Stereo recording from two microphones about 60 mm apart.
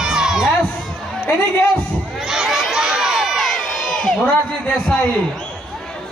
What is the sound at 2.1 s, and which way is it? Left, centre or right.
Crowd, centre.